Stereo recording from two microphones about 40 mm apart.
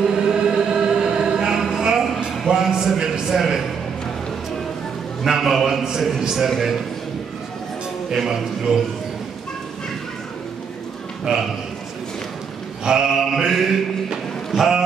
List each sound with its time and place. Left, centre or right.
0.0 s choir: centre
2.4 s a sound: centre
5.2 s a man's voice: centre
8.3 s a man's voice: centre
11.3 s a man's voice: right
12.8 s a man's voice: centre
13.3 s mantra: centre
14.1 s a sound: centre